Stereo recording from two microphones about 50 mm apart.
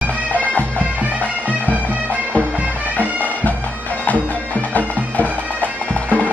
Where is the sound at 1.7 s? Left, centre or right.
Right.